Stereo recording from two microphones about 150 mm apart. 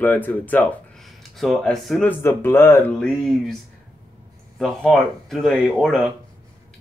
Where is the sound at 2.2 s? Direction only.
15° left (ahead or behind).